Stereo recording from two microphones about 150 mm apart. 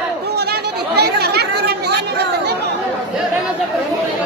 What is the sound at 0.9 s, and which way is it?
Chatter, 90° right.